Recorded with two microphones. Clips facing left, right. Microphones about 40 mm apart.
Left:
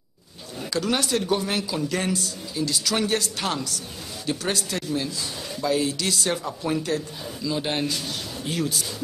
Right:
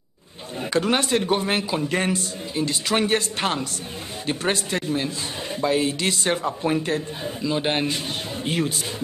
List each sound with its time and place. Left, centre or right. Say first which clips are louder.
0.6 s a man's voice: right 3 dB; right